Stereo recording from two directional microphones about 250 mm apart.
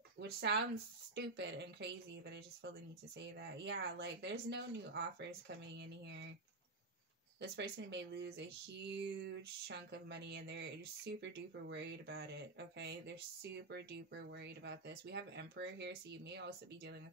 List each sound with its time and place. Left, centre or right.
0.2 s speech: right
7.3 s speech: right